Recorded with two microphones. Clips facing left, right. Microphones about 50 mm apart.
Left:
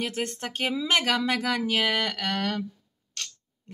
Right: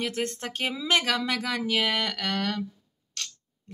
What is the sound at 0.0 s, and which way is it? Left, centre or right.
Speech, centre.